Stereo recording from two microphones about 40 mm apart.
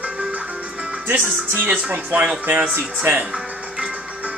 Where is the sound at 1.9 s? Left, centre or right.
Right.